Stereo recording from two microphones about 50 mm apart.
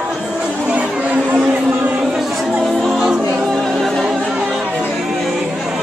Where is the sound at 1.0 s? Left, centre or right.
Right.